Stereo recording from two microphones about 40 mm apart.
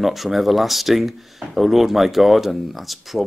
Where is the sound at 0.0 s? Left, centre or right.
Centre.